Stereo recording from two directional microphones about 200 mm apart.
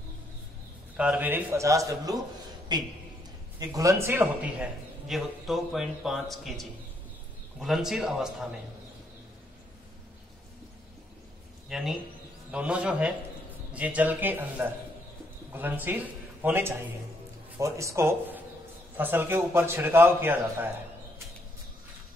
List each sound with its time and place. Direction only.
0.9 s a man's voice: 5° right (ahead or behind)
11.7 s a man's voice: centre (ahead or behind)